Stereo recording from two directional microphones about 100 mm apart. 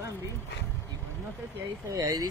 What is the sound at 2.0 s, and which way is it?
Speech, 40° right (ahead or behind).